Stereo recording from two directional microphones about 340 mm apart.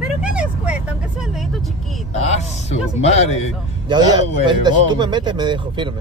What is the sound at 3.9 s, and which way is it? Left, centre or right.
A man's voice, centre.